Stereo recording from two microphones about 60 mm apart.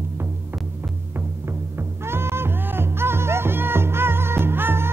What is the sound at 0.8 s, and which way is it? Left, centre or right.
Music, right.